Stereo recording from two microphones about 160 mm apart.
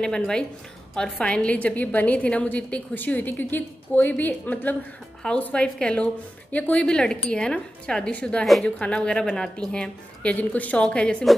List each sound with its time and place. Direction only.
0.0 s a woman's voice: 5° left (ahead or behind)